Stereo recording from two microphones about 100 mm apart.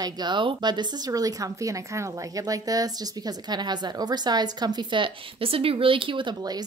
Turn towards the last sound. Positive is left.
turn(degrees=-45)  # may be behind; listen again after turning